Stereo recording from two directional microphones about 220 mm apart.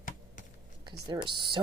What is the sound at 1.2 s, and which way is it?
Speech, 20° right (ahead or behind).